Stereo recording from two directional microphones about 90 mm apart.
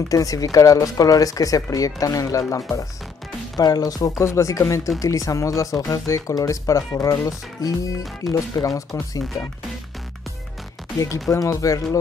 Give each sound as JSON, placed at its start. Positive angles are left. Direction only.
{"t": 0.1, "sound": "speech", "side_deg": 40}
{"t": 3.5, "sound": "speech", "side_deg": 50}
{"t": 11.0, "sound": "speech", "side_deg": 40}